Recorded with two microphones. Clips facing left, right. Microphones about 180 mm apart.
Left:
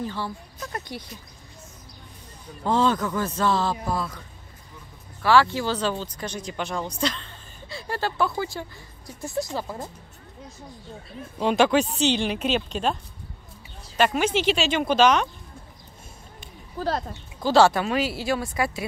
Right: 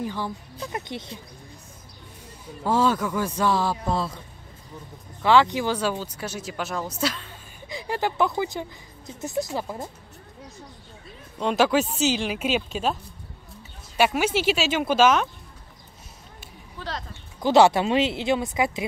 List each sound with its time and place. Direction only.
0.0 s speech: 15° right (ahead or behind)
2.6 s speech: 10° right (ahead or behind)
3.8 s speech: 25° right (ahead or behind)
5.2 s speech: 20° right (ahead or behind)
11.3 s speech: centre (ahead or behind)
16.7 s speech: 40° left (ahead or behind)
17.4 s speech: 20° right (ahead or behind)